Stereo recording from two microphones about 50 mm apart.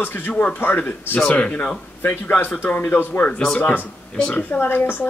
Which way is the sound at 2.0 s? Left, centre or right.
Left.